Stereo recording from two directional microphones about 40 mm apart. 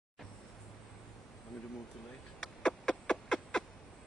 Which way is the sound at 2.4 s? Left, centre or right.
Centre.